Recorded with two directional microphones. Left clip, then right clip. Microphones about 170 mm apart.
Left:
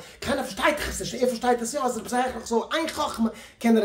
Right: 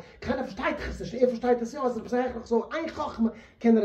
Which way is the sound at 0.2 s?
20° left (ahead or behind).